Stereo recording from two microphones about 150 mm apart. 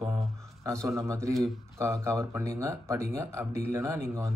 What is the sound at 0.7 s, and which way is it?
Speech, 20° right (ahead or behind).